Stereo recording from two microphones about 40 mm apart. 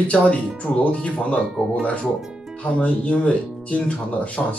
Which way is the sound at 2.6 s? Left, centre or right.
Left.